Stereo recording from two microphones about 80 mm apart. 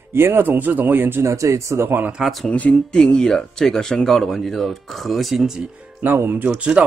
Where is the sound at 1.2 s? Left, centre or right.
Right.